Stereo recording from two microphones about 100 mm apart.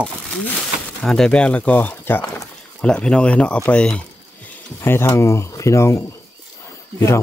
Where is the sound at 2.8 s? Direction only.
10° left (ahead or behind).